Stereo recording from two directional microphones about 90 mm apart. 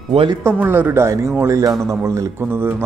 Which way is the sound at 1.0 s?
30° right (ahead or behind).